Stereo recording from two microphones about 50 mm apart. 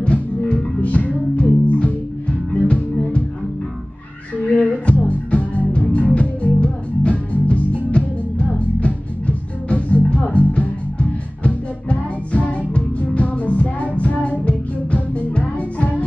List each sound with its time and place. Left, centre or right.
0.0 s music: left
4.4 s music: left